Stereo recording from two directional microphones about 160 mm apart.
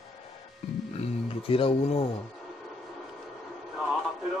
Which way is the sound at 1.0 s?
35° left (ahead or behind).